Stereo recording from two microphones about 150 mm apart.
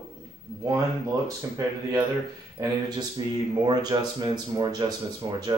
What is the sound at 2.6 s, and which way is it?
Speech, 25° right (ahead or behind).